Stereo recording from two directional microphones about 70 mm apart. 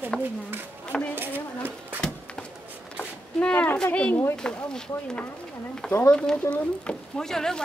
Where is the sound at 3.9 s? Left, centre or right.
Centre.